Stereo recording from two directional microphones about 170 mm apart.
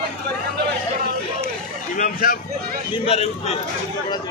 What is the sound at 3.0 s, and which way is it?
Speech, 35° left (ahead or behind).